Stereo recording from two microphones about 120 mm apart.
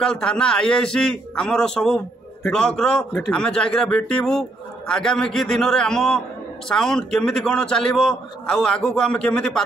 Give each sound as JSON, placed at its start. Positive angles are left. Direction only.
{"t": 0.0, "sound": "a man's voice", "side_deg": 5}